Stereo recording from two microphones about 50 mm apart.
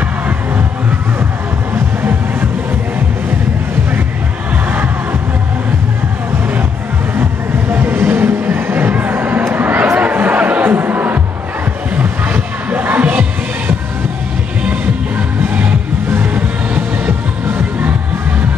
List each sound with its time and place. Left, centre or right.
7.2 s music: right
9.5 s a sound: right
9.9 s music: right
16.1 s music: right